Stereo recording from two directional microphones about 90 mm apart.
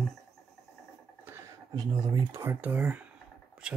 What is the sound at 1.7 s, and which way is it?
Speech, 45° right (ahead or behind).